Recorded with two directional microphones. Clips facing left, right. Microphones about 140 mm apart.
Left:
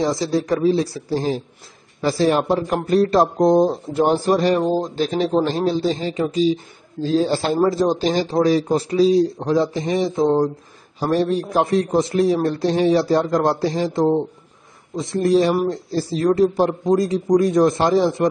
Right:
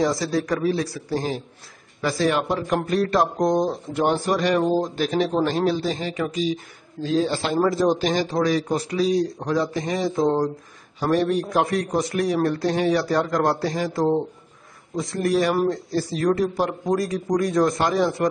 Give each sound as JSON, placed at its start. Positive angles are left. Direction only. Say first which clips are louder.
{"t": 0.0, "sound": "a man's voice", "louder": "left 2 dB", "side_deg": 25}
{"t": 7.6, "sound": "a man's voice", "louder": "left 1 dB", "side_deg": 25}
{"t": 11.0, "sound": "a man's voice", "louder": "left 2 dB", "side_deg": 30}